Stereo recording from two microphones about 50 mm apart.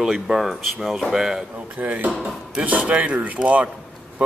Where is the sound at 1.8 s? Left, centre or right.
Right.